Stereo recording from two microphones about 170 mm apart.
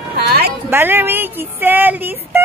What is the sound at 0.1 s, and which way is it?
Music, 65° right (ahead or behind).